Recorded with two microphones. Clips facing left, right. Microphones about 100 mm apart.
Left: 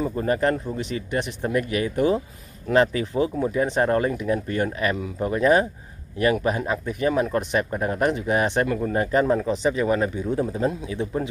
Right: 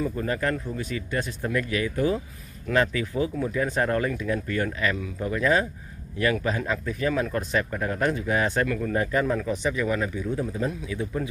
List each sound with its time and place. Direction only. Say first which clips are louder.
0.0 s speech: left 4 dB; 35° left (ahead or behind)